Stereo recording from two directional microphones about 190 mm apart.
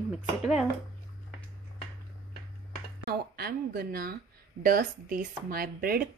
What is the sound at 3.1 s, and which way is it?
Speech, 55° right (ahead or behind).